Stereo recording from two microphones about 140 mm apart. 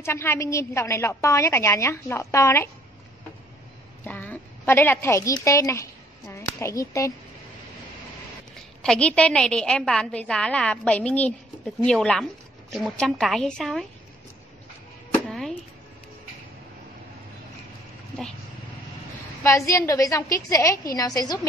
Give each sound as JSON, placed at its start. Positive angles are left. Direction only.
{"t": 0.0, "sound": "a woman's voice", "side_deg": 20}
{"t": 4.0, "sound": "a woman's voice", "side_deg": 10}
{"t": 8.8, "sound": "a woman's voice", "side_deg": 5}
{"t": 15.2, "sound": "a sound", "side_deg": 5}
{"t": 19.4, "sound": "a woman's voice", "side_deg": 20}